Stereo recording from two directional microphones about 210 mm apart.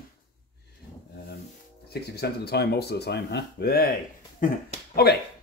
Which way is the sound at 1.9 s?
50° left (ahead or behind).